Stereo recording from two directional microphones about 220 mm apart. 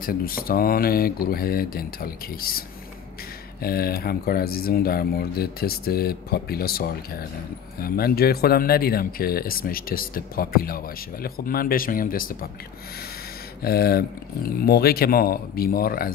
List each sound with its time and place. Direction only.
0.0 s speech: 40° left (ahead or behind)
3.6 s speech: 45° left (ahead or behind)
13.6 s speech: 45° left (ahead or behind)